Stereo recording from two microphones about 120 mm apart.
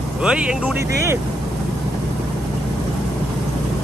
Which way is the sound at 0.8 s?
25° right (ahead or behind).